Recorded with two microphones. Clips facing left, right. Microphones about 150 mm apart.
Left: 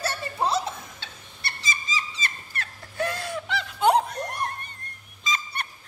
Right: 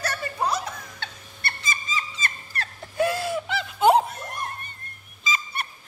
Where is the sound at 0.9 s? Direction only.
55° right (ahead or behind).